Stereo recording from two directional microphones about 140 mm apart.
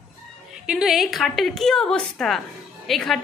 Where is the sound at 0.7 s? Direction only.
Centre (ahead or behind).